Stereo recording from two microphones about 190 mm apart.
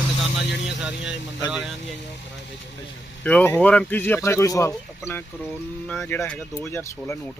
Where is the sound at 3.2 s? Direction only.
5° left (ahead or behind).